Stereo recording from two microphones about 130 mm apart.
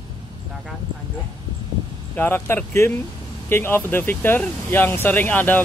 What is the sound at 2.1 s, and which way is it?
Speech, 15° left (ahead or behind).